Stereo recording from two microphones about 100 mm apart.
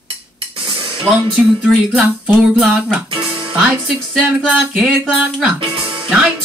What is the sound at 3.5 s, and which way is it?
Speech, 10° right (ahead or behind).